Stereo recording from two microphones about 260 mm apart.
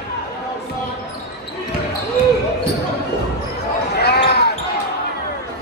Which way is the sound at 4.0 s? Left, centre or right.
Left.